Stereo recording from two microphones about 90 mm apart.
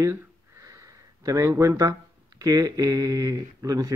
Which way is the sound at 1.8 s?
40° right (ahead or behind).